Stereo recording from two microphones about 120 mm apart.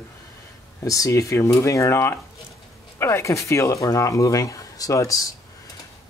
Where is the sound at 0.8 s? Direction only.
30° left (ahead or behind).